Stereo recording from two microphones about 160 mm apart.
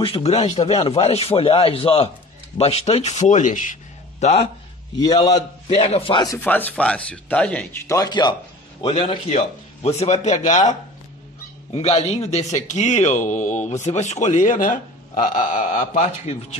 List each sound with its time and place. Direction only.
0.0 s a man's voice: 35° left (ahead or behind); by 3.7 s 50° left (ahead or behind)
4.2 s speech: 40° left (ahead or behind)
4.9 s speech: 25° left (ahead or behind)
5.3 s speech: 40° left (ahead or behind)
6.4 s speech: 10° left (ahead or behind)
7.9 s a man's voice: 25° left (ahead or behind); by 10.6 s 50° left (ahead or behind)
11.7 s a man's voice: 40° left (ahead or behind)